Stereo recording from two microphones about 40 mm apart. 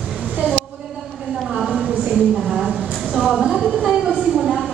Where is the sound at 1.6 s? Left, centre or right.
Centre.